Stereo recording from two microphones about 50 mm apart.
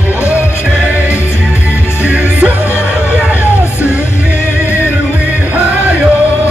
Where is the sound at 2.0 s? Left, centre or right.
Right.